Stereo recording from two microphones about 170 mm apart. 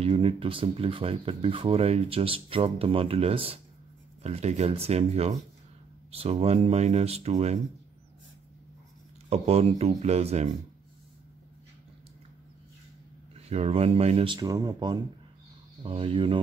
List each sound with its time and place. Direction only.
0.0 s speech: 35° right (ahead or behind)
9.3 s speech: 35° right (ahead or behind)
13.5 s speech: 35° right (ahead or behind)